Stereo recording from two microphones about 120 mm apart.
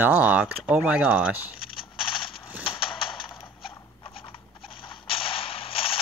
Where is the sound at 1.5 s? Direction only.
45° left (ahead or behind).